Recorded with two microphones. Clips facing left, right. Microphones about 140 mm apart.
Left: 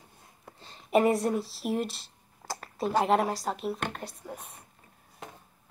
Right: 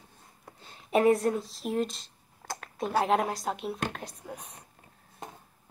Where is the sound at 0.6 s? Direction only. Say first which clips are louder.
Left 1 dB; centre (ahead or behind).